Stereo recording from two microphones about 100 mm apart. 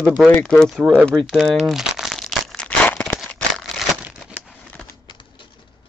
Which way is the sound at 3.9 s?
10° right (ahead or behind).